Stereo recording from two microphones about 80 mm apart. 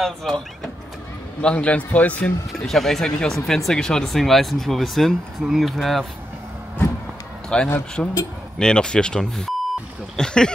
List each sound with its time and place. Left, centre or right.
0.0 s speech: centre
1.4 s speech: centre
2.5 s speech: centre
7.4 s a man's voice: centre